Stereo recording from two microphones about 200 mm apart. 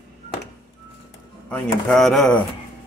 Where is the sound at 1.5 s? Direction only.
Centre (ahead or behind).